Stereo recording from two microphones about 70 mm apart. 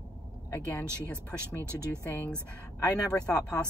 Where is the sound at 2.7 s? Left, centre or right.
Left.